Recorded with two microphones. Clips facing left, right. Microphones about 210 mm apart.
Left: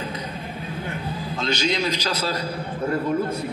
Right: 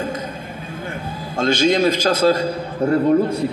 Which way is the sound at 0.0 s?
50° right (ahead or behind).